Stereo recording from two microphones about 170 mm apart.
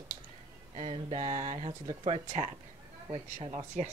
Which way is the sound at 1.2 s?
20° right (ahead or behind).